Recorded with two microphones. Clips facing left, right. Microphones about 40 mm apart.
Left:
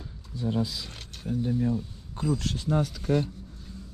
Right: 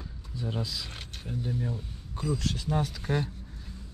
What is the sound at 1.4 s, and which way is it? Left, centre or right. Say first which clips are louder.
Speech: left 6 dB; centre.